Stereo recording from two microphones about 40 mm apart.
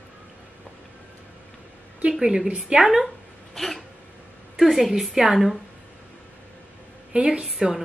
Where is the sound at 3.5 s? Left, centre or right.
Centre.